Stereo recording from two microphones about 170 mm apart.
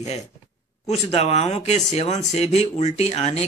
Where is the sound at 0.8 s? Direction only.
40° left (ahead or behind).